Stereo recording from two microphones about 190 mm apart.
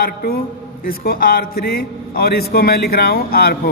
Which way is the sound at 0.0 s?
50° left (ahead or behind).